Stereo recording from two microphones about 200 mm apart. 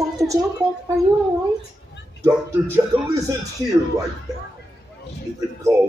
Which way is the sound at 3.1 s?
15° right (ahead or behind).